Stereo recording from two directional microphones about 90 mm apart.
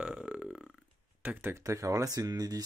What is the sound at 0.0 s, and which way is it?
Burping, 10° right (ahead or behind).